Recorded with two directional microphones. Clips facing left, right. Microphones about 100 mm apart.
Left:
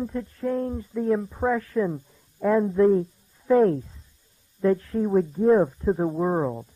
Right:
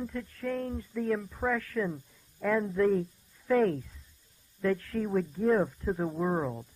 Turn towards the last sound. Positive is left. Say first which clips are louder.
# left 6 dB
turn(degrees=25)  # may be behind; listen again after turning